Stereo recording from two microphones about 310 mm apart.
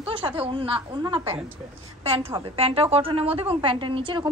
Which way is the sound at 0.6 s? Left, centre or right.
Centre.